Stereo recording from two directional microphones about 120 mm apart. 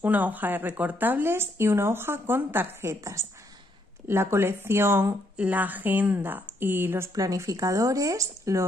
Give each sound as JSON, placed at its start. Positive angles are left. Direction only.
{"t": 0.0, "sound": "speech", "side_deg": -15}